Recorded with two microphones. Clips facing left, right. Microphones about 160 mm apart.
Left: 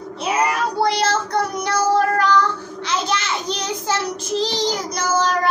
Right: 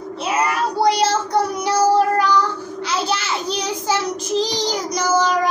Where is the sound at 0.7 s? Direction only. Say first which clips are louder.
Right 3 dB; 10° right (ahead or behind).